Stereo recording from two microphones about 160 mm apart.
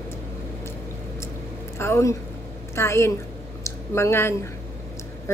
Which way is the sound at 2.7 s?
15° left (ahead or behind).